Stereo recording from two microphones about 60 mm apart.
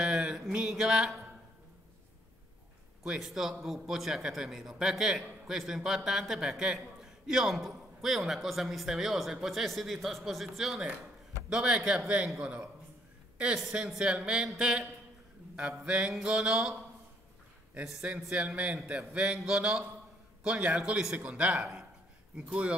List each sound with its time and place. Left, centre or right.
0.0 s a sound: centre
3.0 s a man's voice: centre
17.8 s speech: centre